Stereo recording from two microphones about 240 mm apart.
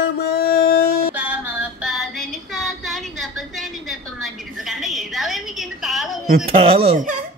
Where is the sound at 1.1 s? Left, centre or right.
Centre.